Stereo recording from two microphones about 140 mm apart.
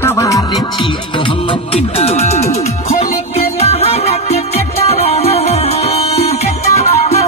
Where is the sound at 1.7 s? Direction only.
50° left (ahead or behind).